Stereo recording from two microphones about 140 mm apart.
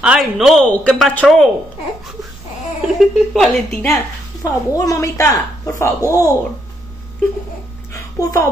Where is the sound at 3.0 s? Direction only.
Centre (ahead or behind).